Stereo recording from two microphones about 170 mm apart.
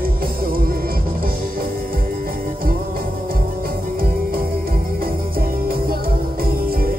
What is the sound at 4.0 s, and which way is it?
Music, 60° right (ahead or behind).